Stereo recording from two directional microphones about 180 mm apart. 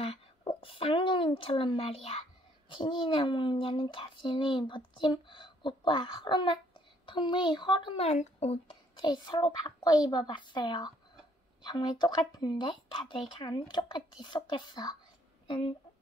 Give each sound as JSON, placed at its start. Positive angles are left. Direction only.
{"t": 0.0, "sound": "a sound", "side_deg": 30}
{"t": 2.7, "sound": "a child's voice", "side_deg": 25}
{"t": 9.0, "sound": "a child's voice", "side_deg": 25}